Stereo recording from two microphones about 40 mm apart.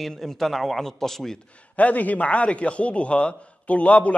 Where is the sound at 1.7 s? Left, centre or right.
Left.